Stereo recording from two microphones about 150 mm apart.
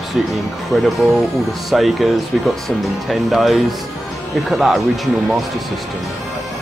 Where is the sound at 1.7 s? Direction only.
Centre (ahead or behind).